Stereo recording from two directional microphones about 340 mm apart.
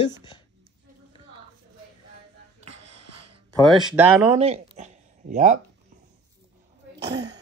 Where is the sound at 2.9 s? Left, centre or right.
Right.